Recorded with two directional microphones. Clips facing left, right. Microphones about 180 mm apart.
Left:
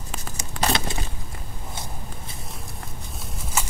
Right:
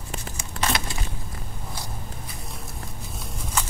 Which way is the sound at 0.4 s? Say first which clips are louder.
Left 3 dB; 35° left (ahead or behind).